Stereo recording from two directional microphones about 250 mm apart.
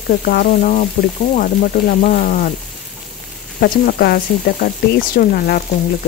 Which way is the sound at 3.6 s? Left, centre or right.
Left.